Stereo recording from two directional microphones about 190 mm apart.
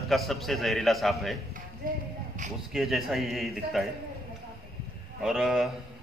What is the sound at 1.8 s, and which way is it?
Speech, 50° right (ahead or behind).